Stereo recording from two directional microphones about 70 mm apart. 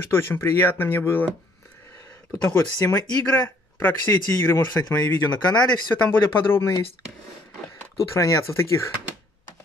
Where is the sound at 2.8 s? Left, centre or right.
Left.